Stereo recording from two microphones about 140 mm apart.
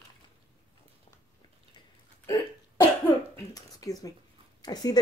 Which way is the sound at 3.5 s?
25° left (ahead or behind).